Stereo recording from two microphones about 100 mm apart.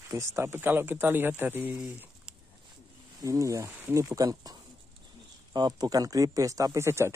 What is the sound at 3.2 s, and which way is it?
Speech, 35° right (ahead or behind).